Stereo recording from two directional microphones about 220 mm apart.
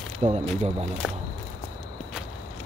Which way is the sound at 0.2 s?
30° right (ahead or behind).